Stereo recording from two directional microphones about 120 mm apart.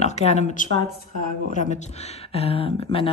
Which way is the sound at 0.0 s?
70° left (ahead or behind).